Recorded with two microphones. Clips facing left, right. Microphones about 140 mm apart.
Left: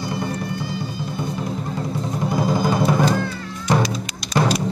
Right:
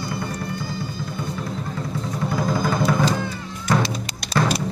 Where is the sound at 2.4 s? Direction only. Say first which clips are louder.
Left 2 dB; 10° left (ahead or behind).